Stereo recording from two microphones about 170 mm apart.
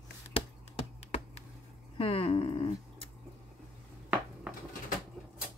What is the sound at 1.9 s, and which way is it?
Speech, 35° left (ahead or behind).